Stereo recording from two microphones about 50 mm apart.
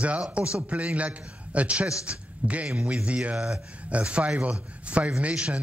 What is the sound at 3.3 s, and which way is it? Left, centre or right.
A man's voice, centre.